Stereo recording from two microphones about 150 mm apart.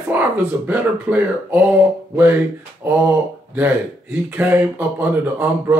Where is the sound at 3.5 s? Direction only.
10° right (ahead or behind).